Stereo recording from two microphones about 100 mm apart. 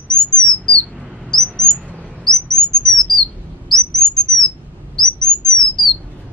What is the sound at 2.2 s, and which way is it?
Chirp, 5° left (ahead or behind).